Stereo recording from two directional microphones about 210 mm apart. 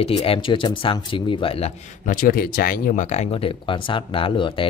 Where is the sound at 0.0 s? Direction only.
25° left (ahead or behind).